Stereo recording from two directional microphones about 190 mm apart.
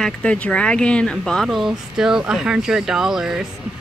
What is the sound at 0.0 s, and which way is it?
Speech, 5° left (ahead or behind).